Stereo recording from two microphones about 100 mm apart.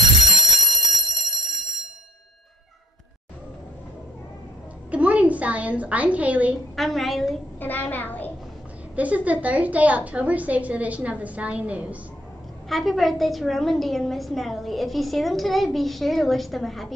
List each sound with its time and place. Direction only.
0.2 s alarm clock: centre (ahead or behind)
4.9 s a woman's voice: 15° right (ahead or behind)
6.7 s a woman's voice: centre (ahead or behind)
7.6 s a child's voice: 20° left (ahead or behind)
8.9 s a woman's voice: 15° right (ahead or behind)
12.6 s a woman's voice: centre (ahead or behind)